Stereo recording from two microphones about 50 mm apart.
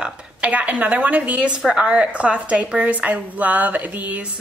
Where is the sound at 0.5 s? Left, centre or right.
Right.